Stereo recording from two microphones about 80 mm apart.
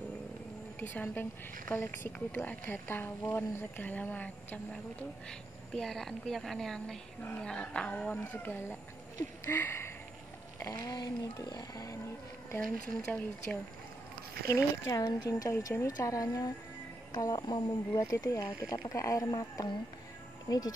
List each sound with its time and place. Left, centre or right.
0.7 s speech: left
5.7 s a woman's voice: centre; by 8.7 s left
9.5 s a sound: left
10.7 s speech: left
12.8 s a woman's voice: centre
14.5 s speech: left
18.3 s speech: left